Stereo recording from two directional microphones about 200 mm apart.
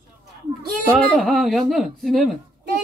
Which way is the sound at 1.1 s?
5° left (ahead or behind).